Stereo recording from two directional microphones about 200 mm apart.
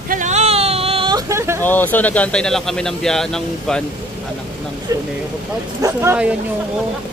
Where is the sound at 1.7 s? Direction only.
10° left (ahead or behind).